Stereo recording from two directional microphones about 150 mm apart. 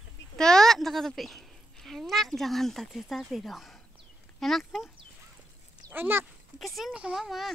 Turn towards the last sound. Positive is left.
turn(degrees=0)  # may be behind; listen again after turning